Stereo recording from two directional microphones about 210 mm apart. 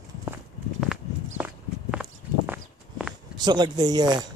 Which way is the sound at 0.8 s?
5° right (ahead or behind).